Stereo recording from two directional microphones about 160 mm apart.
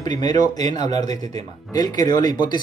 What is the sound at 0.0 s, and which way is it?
Speech, 25° left (ahead or behind).